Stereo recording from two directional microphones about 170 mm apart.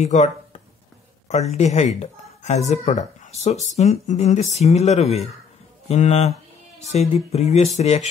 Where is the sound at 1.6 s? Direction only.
40° left (ahead or behind).